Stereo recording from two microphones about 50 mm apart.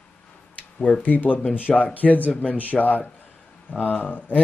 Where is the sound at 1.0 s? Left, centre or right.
Left.